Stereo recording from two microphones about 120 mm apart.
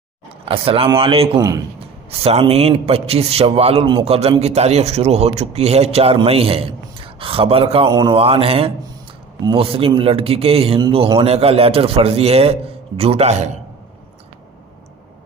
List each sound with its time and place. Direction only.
0.5 s a man's voice: 50° right (ahead or behind)
7.9 s a man's voice: 30° right (ahead or behind)
8.2 s a man's voice: 55° right (ahead or behind)